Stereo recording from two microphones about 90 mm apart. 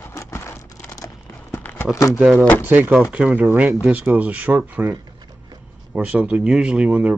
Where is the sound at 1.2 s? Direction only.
20° left (ahead or behind).